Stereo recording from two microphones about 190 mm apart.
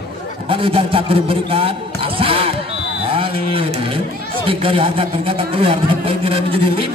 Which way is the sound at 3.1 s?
30° right (ahead or behind).